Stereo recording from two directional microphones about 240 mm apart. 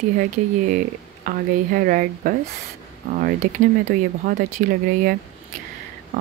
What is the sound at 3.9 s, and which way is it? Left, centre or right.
Speech, right.